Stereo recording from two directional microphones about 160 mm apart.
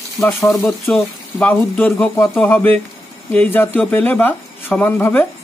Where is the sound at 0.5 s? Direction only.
Centre (ahead or behind).